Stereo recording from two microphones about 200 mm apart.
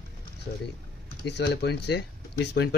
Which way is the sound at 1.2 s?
55° left (ahead or behind).